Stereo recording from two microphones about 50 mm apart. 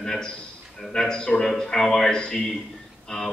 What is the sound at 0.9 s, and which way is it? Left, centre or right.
A man's voice, centre.